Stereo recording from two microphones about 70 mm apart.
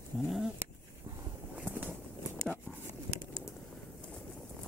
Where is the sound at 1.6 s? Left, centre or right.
Right.